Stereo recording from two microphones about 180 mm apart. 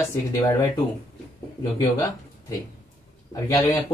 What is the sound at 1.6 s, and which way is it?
Speech, 20° left (ahead or behind).